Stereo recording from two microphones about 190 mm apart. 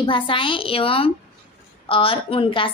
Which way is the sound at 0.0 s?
25° left (ahead or behind).